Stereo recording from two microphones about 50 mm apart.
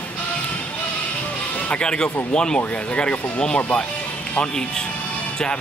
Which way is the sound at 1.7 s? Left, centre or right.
Centre.